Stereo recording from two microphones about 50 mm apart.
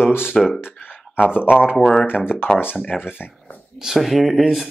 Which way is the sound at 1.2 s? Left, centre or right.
Centre.